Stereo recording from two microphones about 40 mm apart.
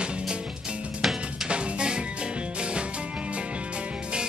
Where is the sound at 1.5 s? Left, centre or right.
Right.